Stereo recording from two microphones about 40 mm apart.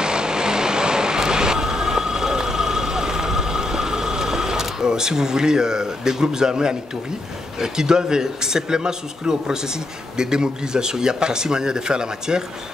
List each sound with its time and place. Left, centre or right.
0.0 s vehicle: centre
7.5 s speech: centre